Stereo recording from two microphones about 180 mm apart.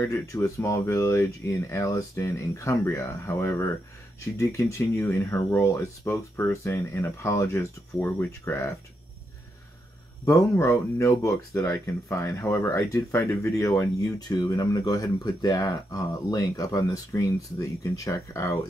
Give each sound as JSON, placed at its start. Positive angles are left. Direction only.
{"t": 0.0, "sound": "speech", "side_deg": 20}
{"t": 10.2, "sound": "speech", "side_deg": 15}